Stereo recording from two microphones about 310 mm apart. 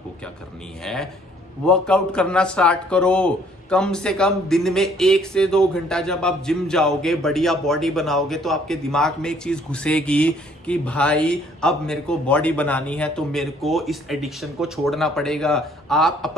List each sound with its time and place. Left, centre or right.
0.9 s speech: centre